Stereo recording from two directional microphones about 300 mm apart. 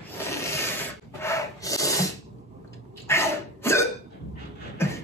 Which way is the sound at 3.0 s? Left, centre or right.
Centre.